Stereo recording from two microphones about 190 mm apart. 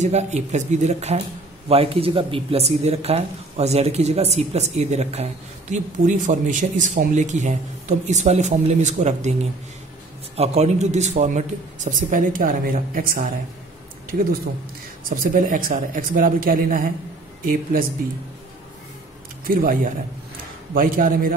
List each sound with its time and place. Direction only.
0.0 s speech: 35° right (ahead or behind)
10.3 s speech: 35° right (ahead or behind); by 13.3 s 50° right (ahead or behind)
15.0 s a man's voice: 45° right (ahead or behind)
19.4 s a man's voice: 45° right (ahead or behind)